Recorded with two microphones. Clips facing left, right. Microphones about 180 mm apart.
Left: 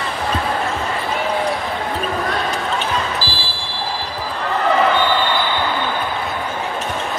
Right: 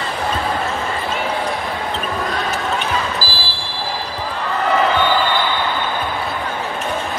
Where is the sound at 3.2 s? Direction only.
40° right (ahead or behind).